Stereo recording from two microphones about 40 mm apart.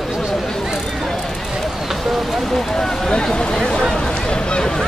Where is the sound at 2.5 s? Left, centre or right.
Centre.